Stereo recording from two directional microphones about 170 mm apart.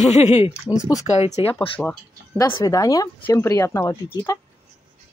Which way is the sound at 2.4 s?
20° left (ahead or behind).